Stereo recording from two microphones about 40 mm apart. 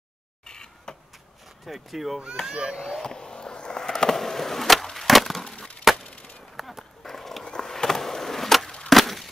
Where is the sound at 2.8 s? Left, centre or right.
Centre.